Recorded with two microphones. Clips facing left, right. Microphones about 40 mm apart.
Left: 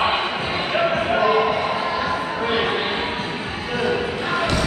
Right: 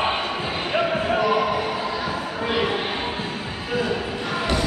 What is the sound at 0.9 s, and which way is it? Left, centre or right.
Basketball bounce, left.